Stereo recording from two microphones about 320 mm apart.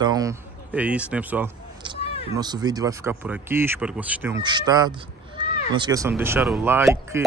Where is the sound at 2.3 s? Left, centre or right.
Centre.